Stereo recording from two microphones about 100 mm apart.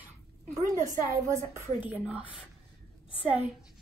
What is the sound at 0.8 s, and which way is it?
Speech, 30° right (ahead or behind).